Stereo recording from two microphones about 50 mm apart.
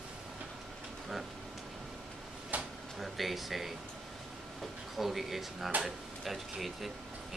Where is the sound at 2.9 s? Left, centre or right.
Centre.